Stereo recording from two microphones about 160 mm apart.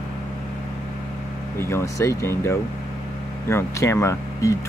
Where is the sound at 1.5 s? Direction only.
15° left (ahead or behind).